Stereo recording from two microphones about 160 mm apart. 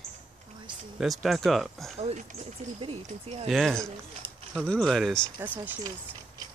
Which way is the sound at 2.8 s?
40° right (ahead or behind).